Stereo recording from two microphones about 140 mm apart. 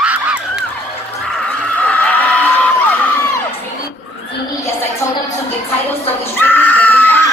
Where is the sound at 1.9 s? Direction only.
10° left (ahead or behind).